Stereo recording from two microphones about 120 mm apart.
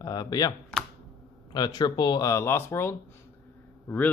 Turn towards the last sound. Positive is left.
turn(degrees=15)  # may be behind; listen again after turning